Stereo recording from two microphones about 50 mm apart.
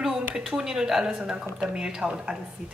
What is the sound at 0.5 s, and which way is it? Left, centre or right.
Speech, centre.